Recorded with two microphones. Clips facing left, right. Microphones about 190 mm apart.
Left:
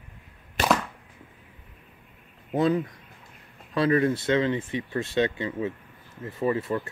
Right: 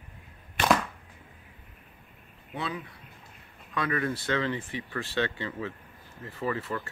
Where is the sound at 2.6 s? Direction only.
45° left (ahead or behind).